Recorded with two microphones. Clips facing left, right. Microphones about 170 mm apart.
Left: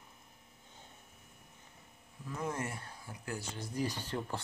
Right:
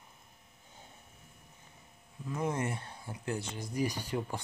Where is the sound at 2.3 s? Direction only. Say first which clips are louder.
Right 4 dB; 20° right (ahead or behind).